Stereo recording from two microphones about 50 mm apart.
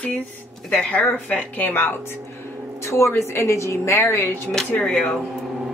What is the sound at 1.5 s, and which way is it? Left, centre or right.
Speech, left.